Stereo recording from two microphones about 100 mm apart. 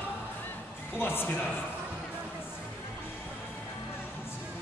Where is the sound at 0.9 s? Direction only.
20° left (ahead or behind).